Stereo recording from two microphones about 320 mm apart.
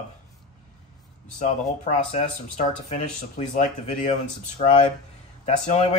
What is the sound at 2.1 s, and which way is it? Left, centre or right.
Speech, left.